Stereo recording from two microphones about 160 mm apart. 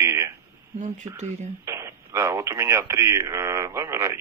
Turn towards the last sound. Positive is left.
turn(degrees=-20)  # may be behind; listen again after turning